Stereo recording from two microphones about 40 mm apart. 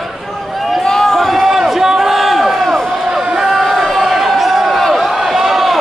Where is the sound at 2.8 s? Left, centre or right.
Centre.